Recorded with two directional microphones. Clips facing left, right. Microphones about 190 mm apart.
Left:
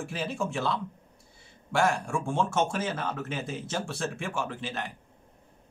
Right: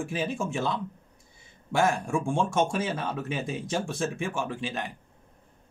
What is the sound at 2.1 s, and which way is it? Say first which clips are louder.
Speech: right 2 dB; 15° right (ahead or behind).